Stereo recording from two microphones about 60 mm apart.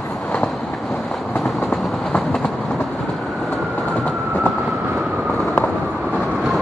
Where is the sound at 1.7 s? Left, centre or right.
Centre.